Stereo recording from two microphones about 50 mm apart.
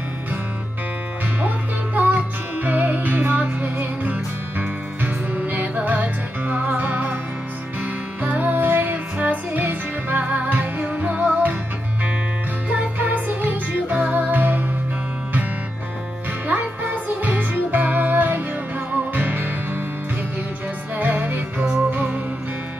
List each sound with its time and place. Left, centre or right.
2.0 s music: right
12.6 s music: right
16.4 s music: right
20.9 s music: right